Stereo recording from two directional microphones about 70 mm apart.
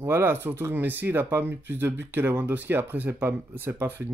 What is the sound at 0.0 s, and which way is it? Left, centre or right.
Speech, right.